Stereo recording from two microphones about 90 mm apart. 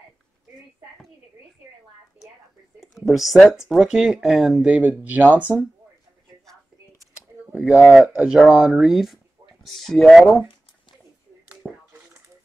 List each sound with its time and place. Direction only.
2.8 s speech: 5° right (ahead or behind)
4.6 s speech: 15° right (ahead or behind)
5.5 s speech: 15° left (ahead or behind)
7.5 s speech: 10° right (ahead or behind)
11.6 s a sound: 15° right (ahead or behind)